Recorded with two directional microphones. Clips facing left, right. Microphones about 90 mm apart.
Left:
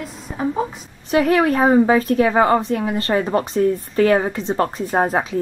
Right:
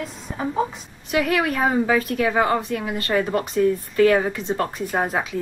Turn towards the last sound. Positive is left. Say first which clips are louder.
# left 4 dB
turn(degrees=35)  # may be behind; listen again after turning